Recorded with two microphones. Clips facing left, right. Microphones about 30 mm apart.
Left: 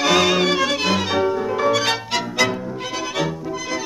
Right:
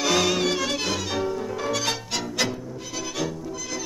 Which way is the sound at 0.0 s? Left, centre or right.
Left.